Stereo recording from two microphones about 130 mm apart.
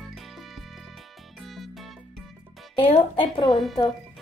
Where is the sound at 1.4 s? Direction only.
Centre (ahead or behind).